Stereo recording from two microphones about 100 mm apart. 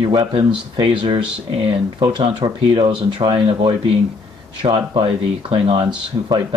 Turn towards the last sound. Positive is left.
turn(degrees=-40)  # may be behind; listen again after turning